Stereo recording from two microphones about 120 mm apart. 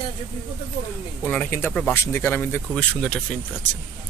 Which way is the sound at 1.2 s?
15° left (ahead or behind).